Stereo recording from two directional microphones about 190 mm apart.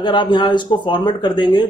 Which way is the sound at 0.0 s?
25° left (ahead or behind).